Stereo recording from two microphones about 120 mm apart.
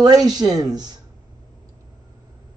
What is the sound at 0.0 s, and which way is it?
Speech, 30° right (ahead or behind).